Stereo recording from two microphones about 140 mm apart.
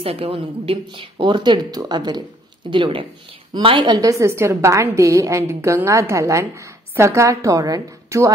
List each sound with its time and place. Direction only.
0.0 s a woman's voice: 45° right (ahead or behind); by 8.3 s 25° right (ahead or behind)